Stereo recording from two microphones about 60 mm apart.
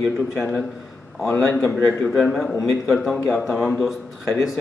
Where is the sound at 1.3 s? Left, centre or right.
Left.